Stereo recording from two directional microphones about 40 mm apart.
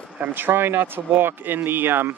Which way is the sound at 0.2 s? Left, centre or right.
Right.